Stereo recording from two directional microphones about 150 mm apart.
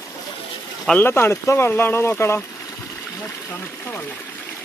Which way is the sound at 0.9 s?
15° left (ahead or behind).